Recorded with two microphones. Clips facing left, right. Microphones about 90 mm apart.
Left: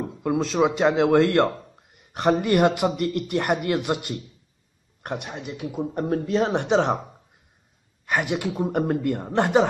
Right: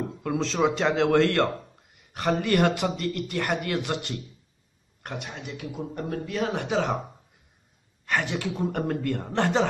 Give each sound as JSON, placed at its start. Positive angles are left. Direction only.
{"t": 0.2, "sound": "a woman's voice", "side_deg": 10}
{"t": 8.0, "sound": "a woman's voice", "side_deg": 15}